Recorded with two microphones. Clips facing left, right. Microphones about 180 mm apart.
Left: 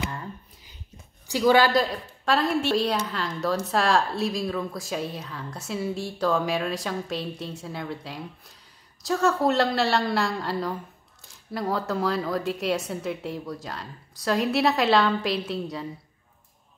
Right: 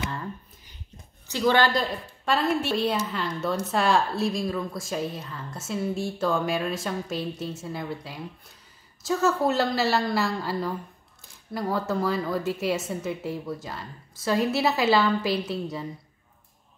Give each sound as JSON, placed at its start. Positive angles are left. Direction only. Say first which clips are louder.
{"t": 1.2, "sound": "a woman's voice", "louder": "left 2 dB", "side_deg": 10}